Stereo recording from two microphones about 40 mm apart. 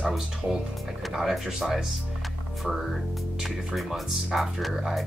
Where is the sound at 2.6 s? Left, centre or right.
Centre.